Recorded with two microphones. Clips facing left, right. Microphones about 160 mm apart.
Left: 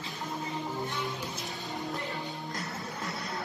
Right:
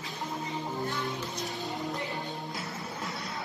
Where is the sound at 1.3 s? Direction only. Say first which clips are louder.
Right 3 dB; centre (ahead or behind).